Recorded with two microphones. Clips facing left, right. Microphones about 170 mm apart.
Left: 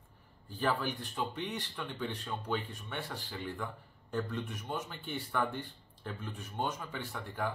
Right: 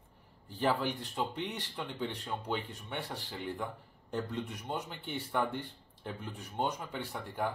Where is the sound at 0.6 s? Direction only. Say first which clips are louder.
Right 2 dB; 20° right (ahead or behind).